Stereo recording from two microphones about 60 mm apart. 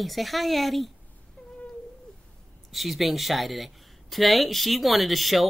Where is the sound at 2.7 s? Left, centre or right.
Centre.